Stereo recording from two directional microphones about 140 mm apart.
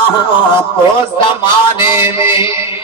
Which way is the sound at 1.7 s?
40° left (ahead or behind).